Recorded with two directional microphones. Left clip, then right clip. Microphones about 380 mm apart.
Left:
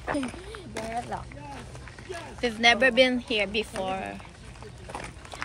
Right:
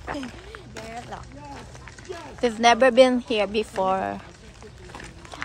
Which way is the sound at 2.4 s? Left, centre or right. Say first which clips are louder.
Right 4 dB; centre.